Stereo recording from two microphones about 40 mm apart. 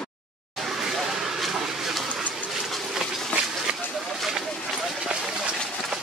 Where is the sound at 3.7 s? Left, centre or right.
Right.